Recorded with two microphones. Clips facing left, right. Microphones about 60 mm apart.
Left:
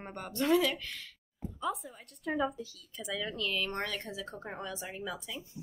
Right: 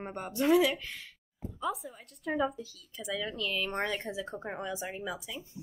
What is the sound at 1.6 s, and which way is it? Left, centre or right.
A woman's voice, centre.